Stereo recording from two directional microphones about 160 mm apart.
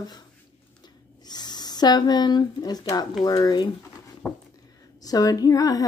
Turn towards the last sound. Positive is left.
turn(degrees=20)  # may be behind; listen again after turning